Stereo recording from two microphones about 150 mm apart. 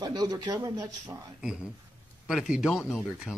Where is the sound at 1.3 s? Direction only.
5° right (ahead or behind).